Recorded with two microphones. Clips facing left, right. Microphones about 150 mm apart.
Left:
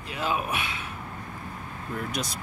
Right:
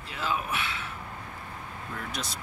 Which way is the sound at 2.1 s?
15° left (ahead or behind).